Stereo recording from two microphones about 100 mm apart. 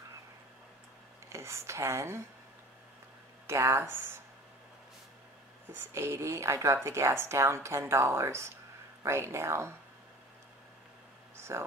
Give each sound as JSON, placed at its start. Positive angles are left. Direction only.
{"t": 1.3, "sound": "speech", "side_deg": -30}
{"t": 3.4, "sound": "speech", "side_deg": -25}
{"t": 5.8, "sound": "speech", "side_deg": -25}
{"t": 11.3, "sound": "a sound", "side_deg": -25}